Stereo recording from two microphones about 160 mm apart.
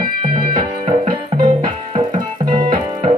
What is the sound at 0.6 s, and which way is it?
Music, 55° right (ahead or behind).